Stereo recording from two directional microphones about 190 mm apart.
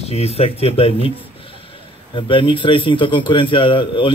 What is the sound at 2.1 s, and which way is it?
A man's voice, 25° left (ahead or behind).